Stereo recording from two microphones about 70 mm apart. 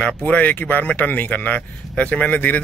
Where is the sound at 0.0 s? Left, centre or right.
Centre.